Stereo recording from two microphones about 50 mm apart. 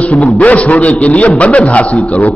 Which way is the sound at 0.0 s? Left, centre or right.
Left.